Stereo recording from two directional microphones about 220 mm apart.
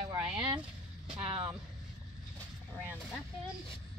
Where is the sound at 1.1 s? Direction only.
25° right (ahead or behind).